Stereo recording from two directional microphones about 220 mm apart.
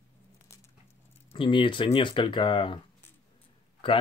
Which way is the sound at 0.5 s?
10° left (ahead or behind).